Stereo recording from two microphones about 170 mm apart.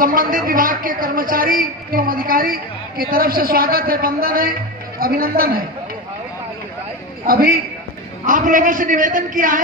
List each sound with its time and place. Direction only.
0.0 s a woman's voice: 55° right (ahead or behind)
7.2 s a woman's voice: 60° right (ahead or behind)